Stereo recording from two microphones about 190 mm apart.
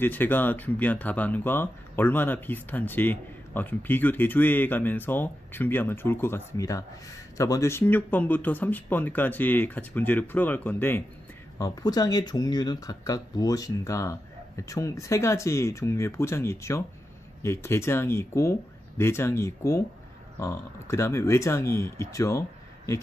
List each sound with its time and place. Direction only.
0.0 s speech: 10° left (ahead or behind)